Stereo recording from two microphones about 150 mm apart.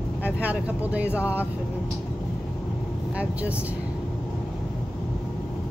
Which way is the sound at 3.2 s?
10° right (ahead or behind).